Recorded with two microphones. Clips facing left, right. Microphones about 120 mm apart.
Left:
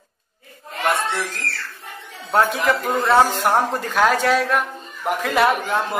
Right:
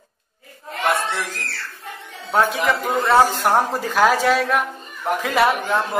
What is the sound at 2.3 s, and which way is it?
A man's voice, centre (ahead or behind).